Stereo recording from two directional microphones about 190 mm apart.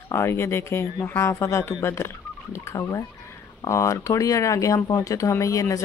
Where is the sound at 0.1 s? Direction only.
15° left (ahead or behind).